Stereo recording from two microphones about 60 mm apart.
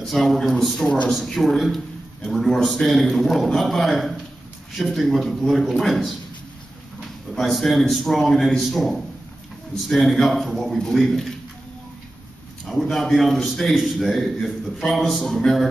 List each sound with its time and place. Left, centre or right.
0.0 s a man's voice: centre
7.3 s a man's voice: centre
12.9 s a man's voice: centre